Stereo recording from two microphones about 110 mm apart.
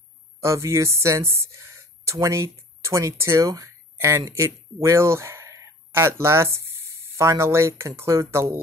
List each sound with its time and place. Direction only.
0.4 s speech: 25° right (ahead or behind)